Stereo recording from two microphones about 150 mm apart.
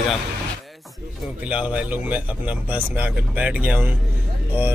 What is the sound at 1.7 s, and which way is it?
Speech, 10° right (ahead or behind).